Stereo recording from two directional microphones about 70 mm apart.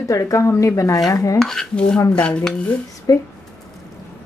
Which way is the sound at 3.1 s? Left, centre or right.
Left.